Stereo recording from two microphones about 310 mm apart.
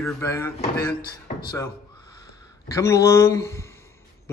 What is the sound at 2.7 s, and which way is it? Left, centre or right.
Speech, centre.